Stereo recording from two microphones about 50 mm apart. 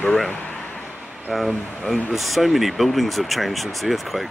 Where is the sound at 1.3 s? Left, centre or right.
Centre.